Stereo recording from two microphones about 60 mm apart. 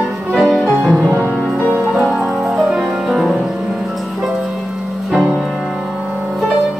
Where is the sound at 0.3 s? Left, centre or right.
Centre.